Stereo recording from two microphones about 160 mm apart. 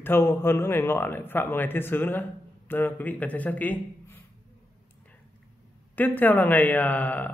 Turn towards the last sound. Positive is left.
turn(degrees=10)  # may be behind; listen again after turning